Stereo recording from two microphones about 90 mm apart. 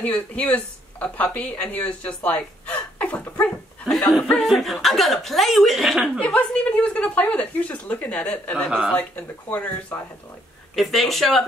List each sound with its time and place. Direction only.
0.0 s speech: 15° left (ahead or behind)
4.4 s speech: centre (ahead or behind)
6.1 s speech: 10° left (ahead or behind)
8.6 s speech: 10° right (ahead or behind)
8.9 s speech: 20° left (ahead or behind)
10.8 s speech: centre (ahead or behind)